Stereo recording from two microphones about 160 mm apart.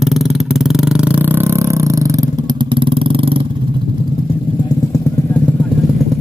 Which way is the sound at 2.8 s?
35° right (ahead or behind).